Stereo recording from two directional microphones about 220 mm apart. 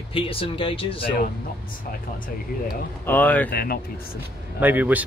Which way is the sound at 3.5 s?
40° left (ahead or behind).